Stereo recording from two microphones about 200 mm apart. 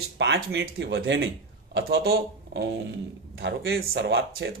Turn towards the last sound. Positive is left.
turn(degrees=-55)  # may be behind; listen again after turning